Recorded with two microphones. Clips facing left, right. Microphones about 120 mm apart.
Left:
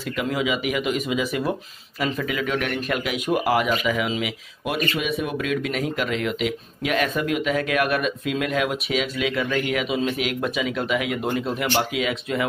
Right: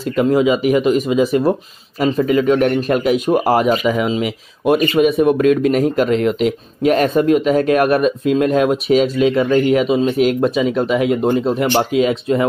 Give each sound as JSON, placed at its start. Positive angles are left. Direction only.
{"t": 0.1, "sound": "speech", "side_deg": -35}